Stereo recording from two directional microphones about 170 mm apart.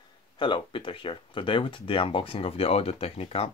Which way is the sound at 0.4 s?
30° left (ahead or behind).